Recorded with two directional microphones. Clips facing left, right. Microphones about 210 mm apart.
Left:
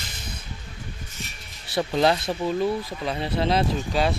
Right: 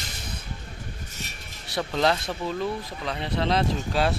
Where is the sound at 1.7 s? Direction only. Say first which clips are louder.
Left 3 dB; 10° left (ahead or behind).